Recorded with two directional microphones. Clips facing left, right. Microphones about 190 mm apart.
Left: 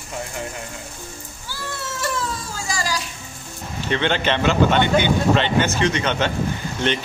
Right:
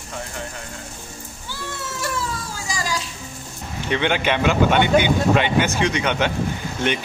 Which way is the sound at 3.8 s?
10° right (ahead or behind).